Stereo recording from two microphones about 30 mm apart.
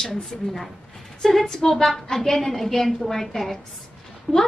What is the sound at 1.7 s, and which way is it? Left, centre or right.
A woman's voice, centre.